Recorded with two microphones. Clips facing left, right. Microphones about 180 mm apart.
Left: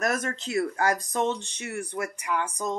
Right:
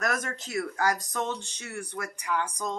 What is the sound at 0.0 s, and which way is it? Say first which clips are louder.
Speech: left 3 dB; 25° left (ahead or behind).